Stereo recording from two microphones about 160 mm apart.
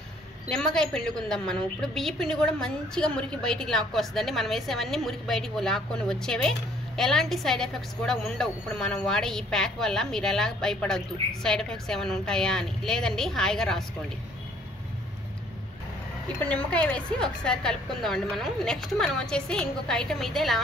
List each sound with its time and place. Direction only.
0.5 s a woman's voice: 5° left (ahead or behind)
16.3 s a woman's voice: 10° left (ahead or behind)